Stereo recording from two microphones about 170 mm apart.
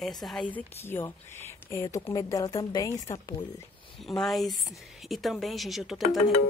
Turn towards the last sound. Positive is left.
turn(degrees=0)  # may be behind; listen again after turning